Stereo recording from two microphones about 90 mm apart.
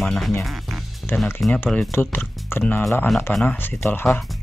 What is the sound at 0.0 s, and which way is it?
Speech, 5° left (ahead or behind).